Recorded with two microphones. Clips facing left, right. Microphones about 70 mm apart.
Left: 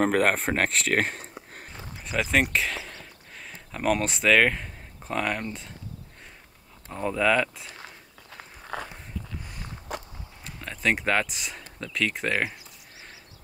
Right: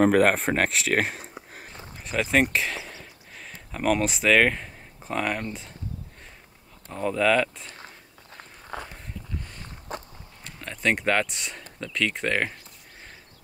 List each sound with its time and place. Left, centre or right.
0.0 s speech: centre
1.8 s a sound: centre
6.9 s speech: centre
8.7 s a sound: centre
9.9 s walk: right
10.4 s speech: centre